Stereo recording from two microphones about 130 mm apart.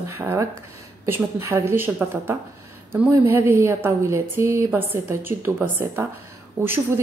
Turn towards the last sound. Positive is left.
turn(degrees=-15)  # may be behind; listen again after turning